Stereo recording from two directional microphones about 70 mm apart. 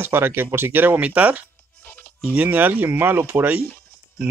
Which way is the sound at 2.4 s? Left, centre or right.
Right.